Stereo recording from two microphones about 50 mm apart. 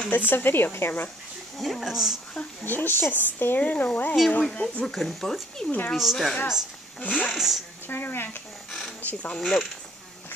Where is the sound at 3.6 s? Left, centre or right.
Left.